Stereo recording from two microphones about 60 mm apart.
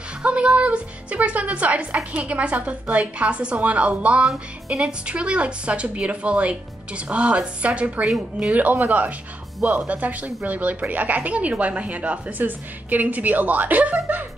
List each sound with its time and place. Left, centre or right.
0.2 s speech: centre